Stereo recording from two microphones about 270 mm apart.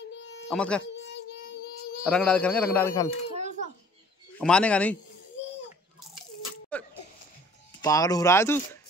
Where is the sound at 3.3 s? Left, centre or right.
Right.